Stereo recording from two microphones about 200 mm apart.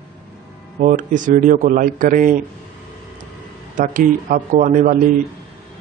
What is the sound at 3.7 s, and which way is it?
A man's voice, 40° right (ahead or behind).